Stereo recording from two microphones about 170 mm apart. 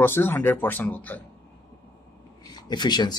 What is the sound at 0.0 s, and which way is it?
Speech, 15° left (ahead or behind).